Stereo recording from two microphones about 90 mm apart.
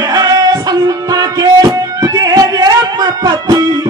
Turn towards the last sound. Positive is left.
turn(degrees=-50)  # may be behind; listen again after turning